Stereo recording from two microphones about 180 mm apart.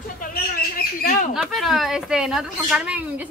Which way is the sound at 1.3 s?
Centre (ahead or behind).